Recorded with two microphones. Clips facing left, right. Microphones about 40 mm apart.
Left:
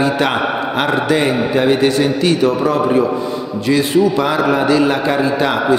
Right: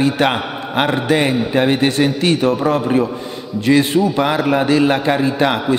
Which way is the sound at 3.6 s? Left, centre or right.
Right.